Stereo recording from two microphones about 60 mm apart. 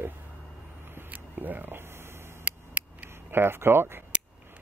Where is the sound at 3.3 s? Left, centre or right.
Right.